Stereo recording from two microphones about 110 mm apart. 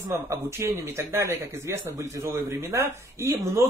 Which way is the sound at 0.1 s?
25° right (ahead or behind).